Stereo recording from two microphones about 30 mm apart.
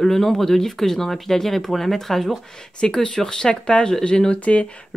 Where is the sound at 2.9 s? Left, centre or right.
Centre.